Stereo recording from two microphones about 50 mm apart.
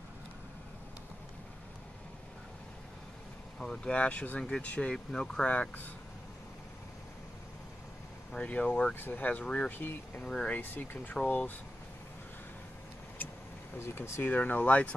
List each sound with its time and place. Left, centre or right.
3.5 s speech: centre
4.4 s speech: centre
4.9 s speech: centre
8.5 s speech: left
8.9 s speech: left
10.1 s speech: left
10.5 s speech: left
13.7 s speech: left
14.2 s speech: left